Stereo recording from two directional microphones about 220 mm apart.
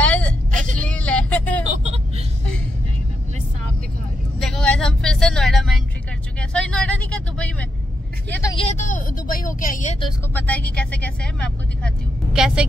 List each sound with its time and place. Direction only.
0.0 s vehicle: 5° left (ahead or behind)
1.7 s vehicle: 30° right (ahead or behind)
4.4 s vehicle: 5° left (ahead or behind)
8.5 s vehicle: 30° left (ahead or behind)
10.3 s vehicle: 5° left (ahead or behind)